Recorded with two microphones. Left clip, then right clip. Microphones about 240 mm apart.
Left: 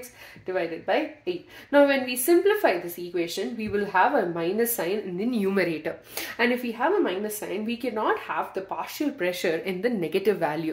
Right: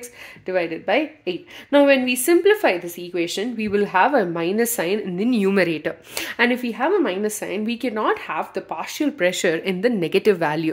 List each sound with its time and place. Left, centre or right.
0.5 s a woman's voice: right